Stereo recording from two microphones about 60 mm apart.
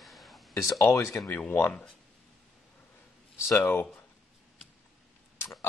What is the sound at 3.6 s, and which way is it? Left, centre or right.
Speech, left.